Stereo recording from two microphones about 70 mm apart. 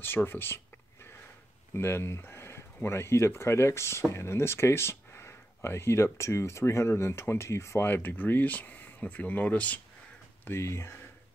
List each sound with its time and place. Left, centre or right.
0.0 s speech: left
1.8 s speech: left
10.4 s speech: left